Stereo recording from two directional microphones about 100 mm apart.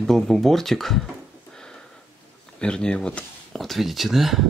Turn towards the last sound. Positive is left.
turn(degrees=0)  # may be behind; listen again after turning